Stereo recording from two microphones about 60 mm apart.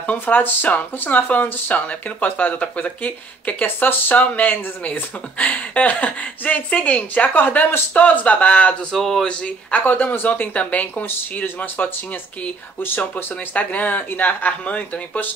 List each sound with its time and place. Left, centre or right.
0.0 s speech: left
8.9 s speech: centre
9.3 s speech: left
11.1 s speech: left